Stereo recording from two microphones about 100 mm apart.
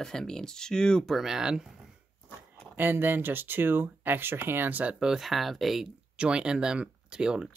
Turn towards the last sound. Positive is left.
turn(degrees=-10)  # may be behind; listen again after turning